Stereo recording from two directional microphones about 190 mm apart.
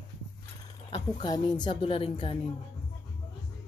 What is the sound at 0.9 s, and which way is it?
A woman's voice, 20° left (ahead or behind).